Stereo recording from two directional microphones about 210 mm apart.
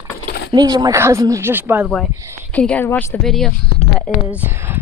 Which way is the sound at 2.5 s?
5° left (ahead or behind).